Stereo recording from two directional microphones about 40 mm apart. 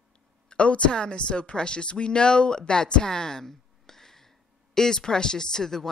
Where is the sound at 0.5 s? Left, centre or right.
Left.